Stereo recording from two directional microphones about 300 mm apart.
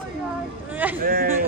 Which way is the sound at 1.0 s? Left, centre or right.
Right.